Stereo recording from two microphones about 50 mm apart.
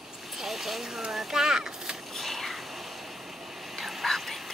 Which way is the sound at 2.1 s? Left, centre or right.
Centre.